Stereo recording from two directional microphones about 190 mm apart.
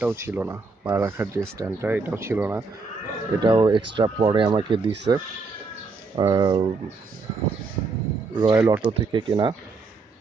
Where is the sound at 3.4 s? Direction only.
25° right (ahead or behind).